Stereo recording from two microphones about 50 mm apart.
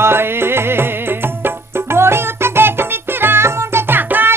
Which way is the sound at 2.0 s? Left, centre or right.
Right.